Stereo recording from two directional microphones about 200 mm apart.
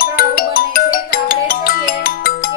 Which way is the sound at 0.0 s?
45° left (ahead or behind).